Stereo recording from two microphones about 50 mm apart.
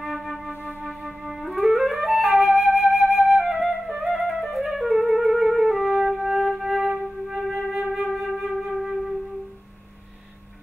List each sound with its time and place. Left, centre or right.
0.0 s flute: centre
0.5 s music: right
0.8 s flute: centre
3.3 s flute: centre
3.8 s music: centre
7.2 s flute: centre